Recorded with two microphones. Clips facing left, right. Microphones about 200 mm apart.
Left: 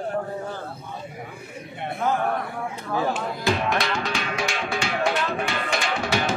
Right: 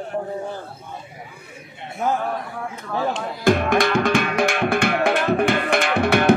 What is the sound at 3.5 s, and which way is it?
Music, 50° right (ahead or behind).